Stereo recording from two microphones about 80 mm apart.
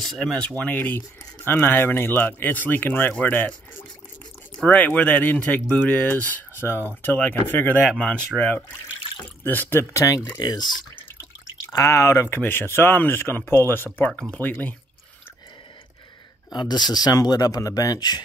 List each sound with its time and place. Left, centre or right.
0.0 s speech: centre
0.4 s speech: centre
0.7 s speech: left
8.0 s speech: centre
9.9 s speech: left
10.4 s speech: left
11.7 s speech: left
16.5 s speech: left